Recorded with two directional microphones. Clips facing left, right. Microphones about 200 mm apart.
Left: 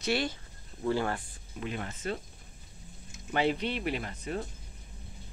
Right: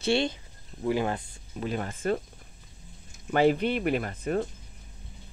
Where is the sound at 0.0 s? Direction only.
25° right (ahead or behind).